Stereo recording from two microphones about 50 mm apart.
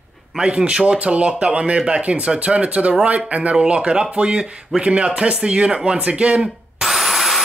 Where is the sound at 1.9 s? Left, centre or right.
Right.